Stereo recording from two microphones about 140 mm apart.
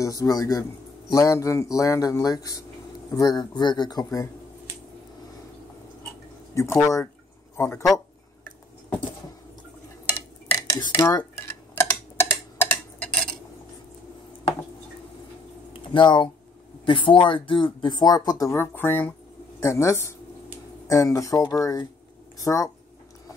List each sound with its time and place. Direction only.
0.0 s speech: 25° left (ahead or behind)
6.5 s speech: 20° left (ahead or behind)
10.7 s dishes: 25° left (ahead or behind)
11.7 s tick-tock: 15° left (ahead or behind)
15.9 s speech: 35° left (ahead or behind)